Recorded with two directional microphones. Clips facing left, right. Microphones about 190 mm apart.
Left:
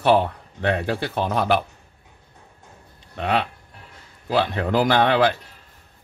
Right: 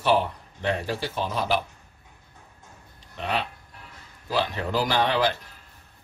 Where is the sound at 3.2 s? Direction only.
60° left (ahead or behind).